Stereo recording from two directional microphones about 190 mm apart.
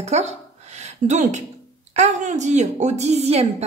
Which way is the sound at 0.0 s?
35° right (ahead or behind).